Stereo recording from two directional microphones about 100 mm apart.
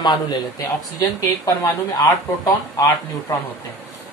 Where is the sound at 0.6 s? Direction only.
35° left (ahead or behind).